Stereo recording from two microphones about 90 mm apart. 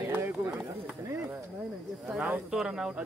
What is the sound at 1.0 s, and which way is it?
Chop, 30° right (ahead or behind).